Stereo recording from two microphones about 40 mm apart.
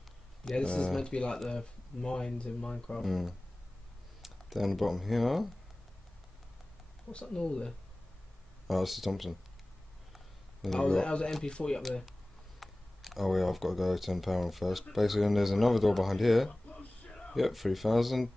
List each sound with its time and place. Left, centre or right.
0.6 s speech: left
3.0 s speech: centre
7.2 s speech: centre
8.6 s speech: centre
10.1 s a sound: centre
11.4 s speech: left
12.1 s speech: centre
16.7 s a sound: left
17.3 s speech: centre